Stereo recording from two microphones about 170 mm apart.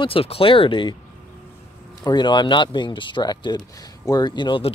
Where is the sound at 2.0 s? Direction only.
25° left (ahead or behind).